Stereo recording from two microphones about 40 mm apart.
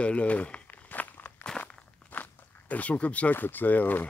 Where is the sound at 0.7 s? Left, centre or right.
Left.